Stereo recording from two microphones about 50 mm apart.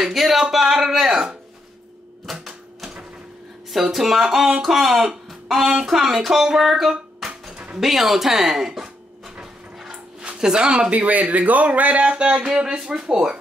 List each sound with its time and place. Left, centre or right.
0.0 s speech: centre
2.2 s typewriter: centre
3.7 s speech: centre
9.4 s a sound: centre
10.3 s speech: centre